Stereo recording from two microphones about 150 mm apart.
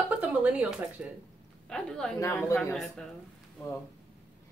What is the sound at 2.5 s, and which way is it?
Speech, 5° left (ahead or behind).